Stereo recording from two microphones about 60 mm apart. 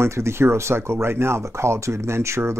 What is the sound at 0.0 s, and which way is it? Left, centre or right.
Speech, right.